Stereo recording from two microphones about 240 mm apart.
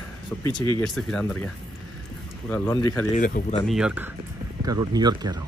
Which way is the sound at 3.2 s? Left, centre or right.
Left.